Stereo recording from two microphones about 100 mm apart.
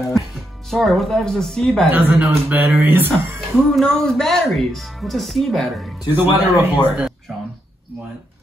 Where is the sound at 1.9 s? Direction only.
20° right (ahead or behind).